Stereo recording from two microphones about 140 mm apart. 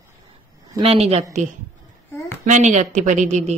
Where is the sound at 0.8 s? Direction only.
45° right (ahead or behind).